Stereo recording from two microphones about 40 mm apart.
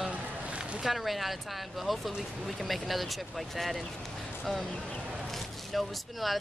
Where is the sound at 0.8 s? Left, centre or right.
Centre.